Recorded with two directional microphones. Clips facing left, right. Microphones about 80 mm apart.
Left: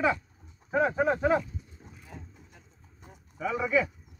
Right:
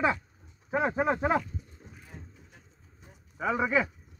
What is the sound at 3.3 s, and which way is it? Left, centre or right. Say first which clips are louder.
Speech: even; right.